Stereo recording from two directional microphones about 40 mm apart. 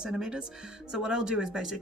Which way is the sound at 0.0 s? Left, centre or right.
Centre.